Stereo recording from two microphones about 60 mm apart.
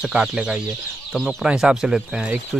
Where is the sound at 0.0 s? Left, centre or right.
Centre.